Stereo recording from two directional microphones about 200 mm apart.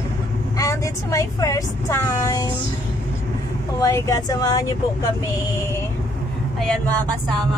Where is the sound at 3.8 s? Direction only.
15° left (ahead or behind).